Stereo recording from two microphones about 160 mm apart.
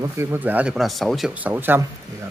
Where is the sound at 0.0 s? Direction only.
15° right (ahead or behind).